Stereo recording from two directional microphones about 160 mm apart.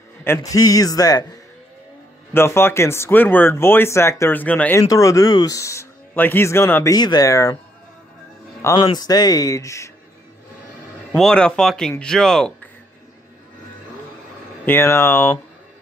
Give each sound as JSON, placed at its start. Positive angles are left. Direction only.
{"t": 0.2, "sound": "speech", "side_deg": 20}
{"t": 2.3, "sound": "speech", "side_deg": 15}
{"t": 4.8, "sound": "speech", "side_deg": 20}
{"t": 8.7, "sound": "speech", "side_deg": 25}
{"t": 11.1, "sound": "speech", "side_deg": 5}
{"t": 14.7, "sound": "speech", "side_deg": 15}